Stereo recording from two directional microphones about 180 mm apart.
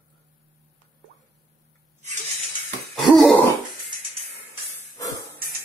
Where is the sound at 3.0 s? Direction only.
Centre (ahead or behind).